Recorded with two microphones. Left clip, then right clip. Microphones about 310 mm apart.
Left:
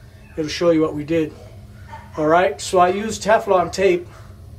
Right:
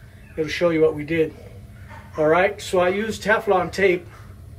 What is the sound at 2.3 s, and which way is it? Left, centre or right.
A man's voice, centre.